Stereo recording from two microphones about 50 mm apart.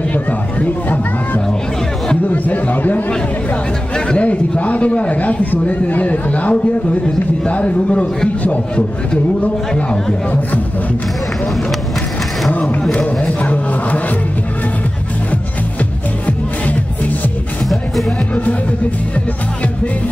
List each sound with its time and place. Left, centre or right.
0.1 s a sound: left
2.2 s a man's voice: left
3.9 s a sound: centre
4.3 s a man's voice: left
9.4 s a man's voice: left
12.9 s a man's voice: left
16.3 s music: left
18.3 s a man's voice: left